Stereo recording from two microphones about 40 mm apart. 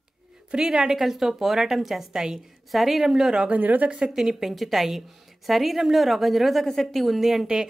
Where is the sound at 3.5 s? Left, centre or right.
Right.